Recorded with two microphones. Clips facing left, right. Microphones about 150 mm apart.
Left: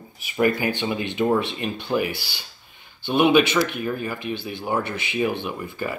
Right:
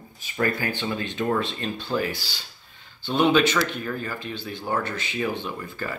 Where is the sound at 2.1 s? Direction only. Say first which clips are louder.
Left 1 dB; 60° left (ahead or behind).